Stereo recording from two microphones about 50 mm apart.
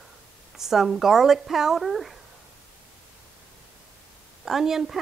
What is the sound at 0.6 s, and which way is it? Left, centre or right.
Speech, centre.